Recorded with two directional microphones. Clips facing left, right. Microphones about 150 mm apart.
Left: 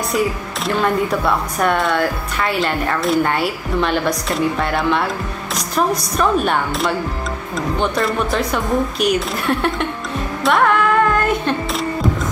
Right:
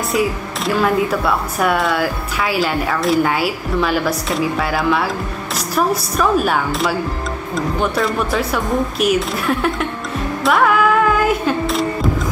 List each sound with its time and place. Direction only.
0.7 s speech: centre (ahead or behind)
10.4 s music: centre (ahead or behind)